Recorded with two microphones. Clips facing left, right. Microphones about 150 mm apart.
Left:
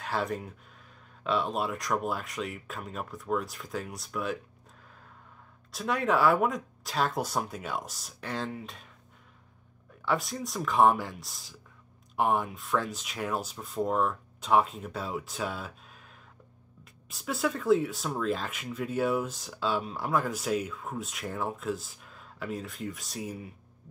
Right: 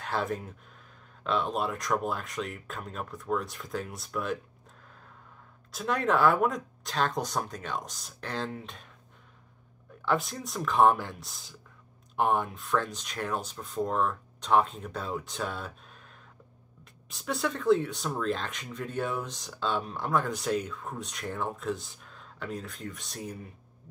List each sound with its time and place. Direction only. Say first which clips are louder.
0.0 s speech: even; centre (ahead or behind)
5.7 s speech: even; centre (ahead or behind)
10.0 s speech: right 1 dB; centre (ahead or behind)